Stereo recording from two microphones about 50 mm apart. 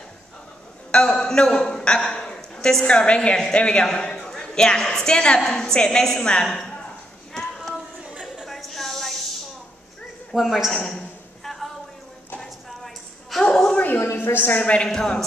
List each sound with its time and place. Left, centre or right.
0.9 s a sound: centre
3.1 s a man's voice: centre
7.3 s child singing: centre
8.5 s snake: centre
10.3 s a woman's voice: centre
10.8 s a sound: centre
13.4 s a sound: centre
14.2 s a woman's voice: left
14.6 s a woman's voice: left
14.9 s a woman's voice: centre